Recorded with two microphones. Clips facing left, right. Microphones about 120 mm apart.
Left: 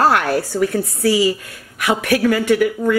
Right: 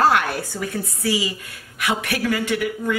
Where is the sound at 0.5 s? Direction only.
70° left (ahead or behind).